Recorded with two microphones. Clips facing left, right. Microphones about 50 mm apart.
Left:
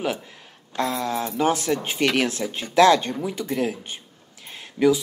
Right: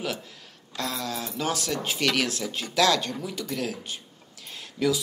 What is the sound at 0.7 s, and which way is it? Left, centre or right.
Speech, left.